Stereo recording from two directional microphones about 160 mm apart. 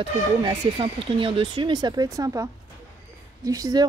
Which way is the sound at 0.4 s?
30° right (ahead or behind).